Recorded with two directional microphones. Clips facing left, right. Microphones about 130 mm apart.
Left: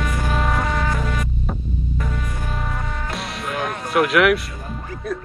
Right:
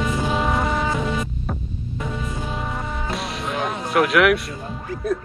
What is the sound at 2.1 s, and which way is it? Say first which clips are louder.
Music: right 1 dB; 20° right (ahead or behind).